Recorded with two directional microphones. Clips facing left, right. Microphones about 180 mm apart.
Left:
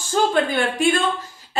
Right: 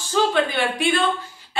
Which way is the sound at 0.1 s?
45° left (ahead or behind).